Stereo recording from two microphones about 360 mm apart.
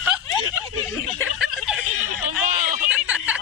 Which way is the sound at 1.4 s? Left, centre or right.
Centre.